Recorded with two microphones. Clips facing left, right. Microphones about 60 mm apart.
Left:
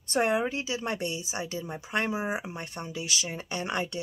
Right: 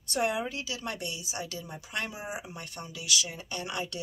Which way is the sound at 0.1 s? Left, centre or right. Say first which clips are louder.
Left 4 dB; left.